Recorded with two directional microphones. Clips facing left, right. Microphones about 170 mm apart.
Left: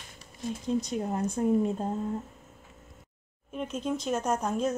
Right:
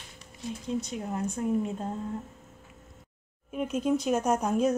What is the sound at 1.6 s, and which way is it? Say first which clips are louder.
Speech: left 3 dB; 30° left (ahead or behind).